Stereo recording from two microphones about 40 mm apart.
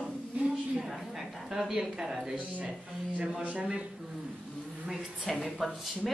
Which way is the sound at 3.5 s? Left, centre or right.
Right.